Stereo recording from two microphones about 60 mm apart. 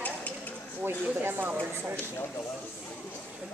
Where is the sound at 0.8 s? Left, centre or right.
Right.